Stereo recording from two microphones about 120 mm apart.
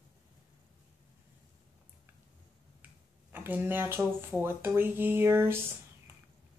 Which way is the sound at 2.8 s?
15° right (ahead or behind).